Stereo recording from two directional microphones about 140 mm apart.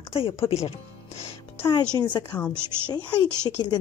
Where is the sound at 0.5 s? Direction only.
45° left (ahead or behind).